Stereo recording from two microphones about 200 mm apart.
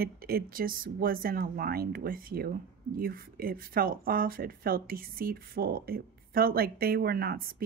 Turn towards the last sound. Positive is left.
turn(degrees=-50)  # may be behind; listen again after turning